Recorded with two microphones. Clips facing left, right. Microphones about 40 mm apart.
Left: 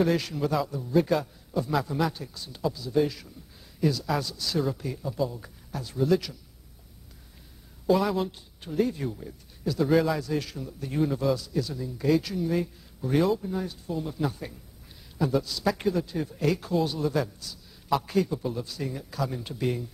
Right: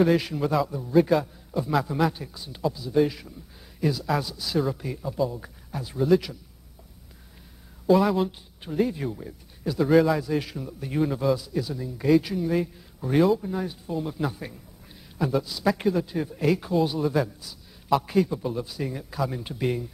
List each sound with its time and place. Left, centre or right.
0.0 s a man's voice: centre
7.8 s speech: centre
8.3 s a man's voice: centre
9.8 s a man's voice: centre